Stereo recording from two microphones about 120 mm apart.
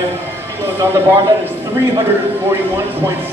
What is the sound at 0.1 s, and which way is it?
A man's voice, 20° right (ahead or behind).